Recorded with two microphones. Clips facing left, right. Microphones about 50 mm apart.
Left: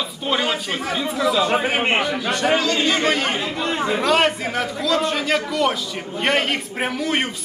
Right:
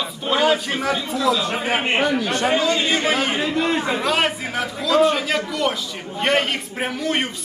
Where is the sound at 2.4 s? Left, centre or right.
Centre.